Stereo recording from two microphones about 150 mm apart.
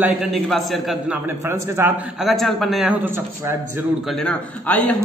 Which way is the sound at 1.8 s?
15° right (ahead or behind).